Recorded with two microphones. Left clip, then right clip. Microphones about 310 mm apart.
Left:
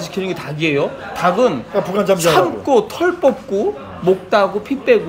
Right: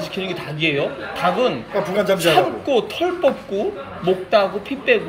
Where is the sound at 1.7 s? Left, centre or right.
Left.